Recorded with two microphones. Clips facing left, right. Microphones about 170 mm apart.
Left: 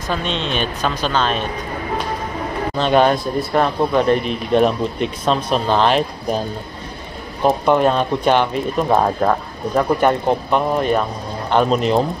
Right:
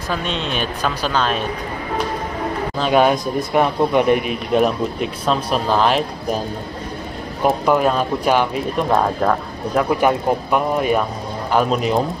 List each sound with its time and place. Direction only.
0.1 s speech: 5° right (ahead or behind)
2.8 s speech: 5° right (ahead or behind)
7.4 s speech: 5° right (ahead or behind)
9.8 s speech: 5° right (ahead or behind)